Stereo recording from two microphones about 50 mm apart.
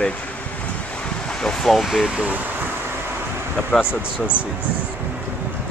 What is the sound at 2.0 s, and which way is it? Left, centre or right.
Speech, centre.